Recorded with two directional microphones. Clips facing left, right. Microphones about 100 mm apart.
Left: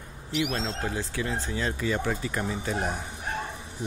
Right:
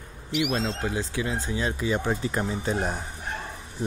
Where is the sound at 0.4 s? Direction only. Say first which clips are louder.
Right 2 dB; 15° right (ahead or behind).